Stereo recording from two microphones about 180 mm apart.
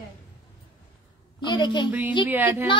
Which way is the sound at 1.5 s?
25° left (ahead or behind).